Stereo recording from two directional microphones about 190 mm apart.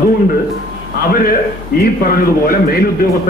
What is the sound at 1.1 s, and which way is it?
A man's voice, 50° left (ahead or behind).